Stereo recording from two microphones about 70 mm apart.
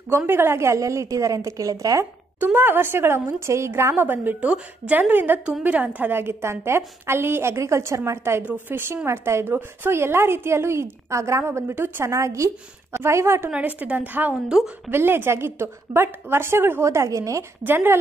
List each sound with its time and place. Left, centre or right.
0.3 s a woman's voice: right
2.4 s speech: right
3.9 s a woman's voice: right
6.1 s speech: right
12.1 s a woman's voice: right
13.5 s a woman's voice: right
17.6 s speech: right